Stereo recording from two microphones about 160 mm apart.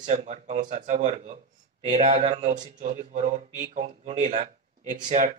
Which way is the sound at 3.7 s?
50° right (ahead or behind).